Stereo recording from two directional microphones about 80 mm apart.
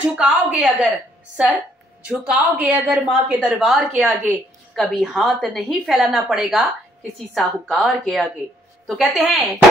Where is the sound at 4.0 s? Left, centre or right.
Centre.